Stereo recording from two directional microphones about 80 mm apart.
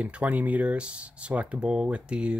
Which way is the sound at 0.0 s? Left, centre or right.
Centre.